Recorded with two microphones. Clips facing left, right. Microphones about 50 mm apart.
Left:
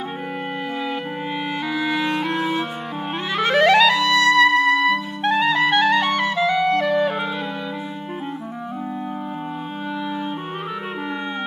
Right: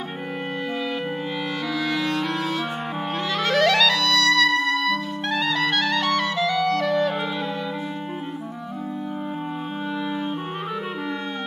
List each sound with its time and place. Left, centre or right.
1.7 s clarinet: centre